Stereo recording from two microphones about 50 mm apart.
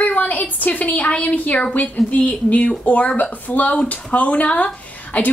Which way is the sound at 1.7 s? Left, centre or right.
Left.